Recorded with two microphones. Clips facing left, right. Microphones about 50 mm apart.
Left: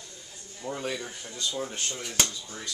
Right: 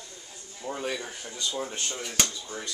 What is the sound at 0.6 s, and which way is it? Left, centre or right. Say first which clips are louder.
Speech: right 1 dB; centre.